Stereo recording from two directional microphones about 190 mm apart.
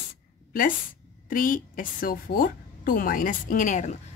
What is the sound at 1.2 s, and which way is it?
A woman's voice, 45° left (ahead or behind).